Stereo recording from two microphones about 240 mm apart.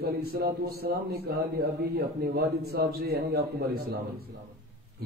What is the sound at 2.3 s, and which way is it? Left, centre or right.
Speech, right.